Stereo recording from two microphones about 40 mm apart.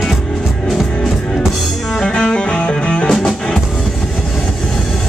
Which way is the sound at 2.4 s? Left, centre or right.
Left.